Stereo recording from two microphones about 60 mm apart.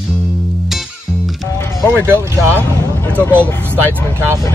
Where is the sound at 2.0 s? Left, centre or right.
Right.